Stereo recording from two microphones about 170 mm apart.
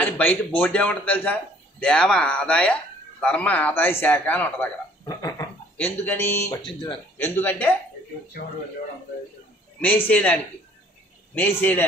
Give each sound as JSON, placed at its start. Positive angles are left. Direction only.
{"t": 0.0, "sound": "a man's voice", "side_deg": 10}
{"t": 6.6, "sound": "speech", "side_deg": 30}
{"t": 7.2, "sound": "a man's voice", "side_deg": 10}
{"t": 9.8, "sound": "a man's voice", "side_deg": 10}